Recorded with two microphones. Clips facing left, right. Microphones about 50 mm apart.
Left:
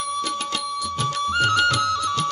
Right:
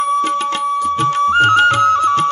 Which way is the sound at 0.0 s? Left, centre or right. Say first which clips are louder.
Right 10 dB; right.